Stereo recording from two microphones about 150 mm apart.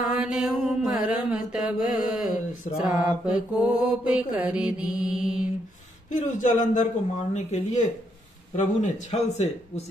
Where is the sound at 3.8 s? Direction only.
10° right (ahead or behind).